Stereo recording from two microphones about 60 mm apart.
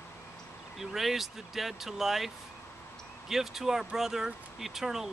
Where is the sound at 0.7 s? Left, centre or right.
Centre.